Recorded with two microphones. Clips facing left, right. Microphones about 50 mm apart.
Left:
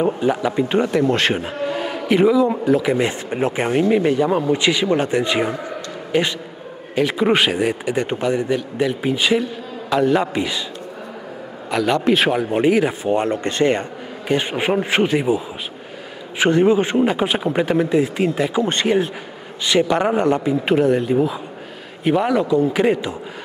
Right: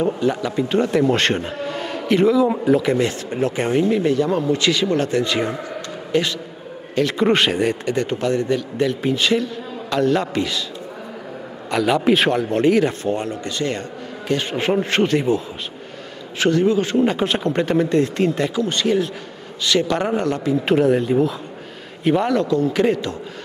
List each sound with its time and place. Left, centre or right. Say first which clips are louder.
0.0 s a man's voice: left 2 dB; centre
0.9 s speech: even; centre
2.4 s speech: even; centre
3.0 s a man's voice: even; centre
11.7 s speech: even; centre
12.4 s a man's voice: even; centre
13.1 s a man's voice: left 5 dB; left; by 15.4 s centre
16.3 s speech: left 2 dB; left
17.0 s a man's voice: left 1 dB; centre
18.5 s speech: left 2 dB; left
19.6 s speech: left 2 dB; centre
20.6 s a man's voice: right 1 dB; centre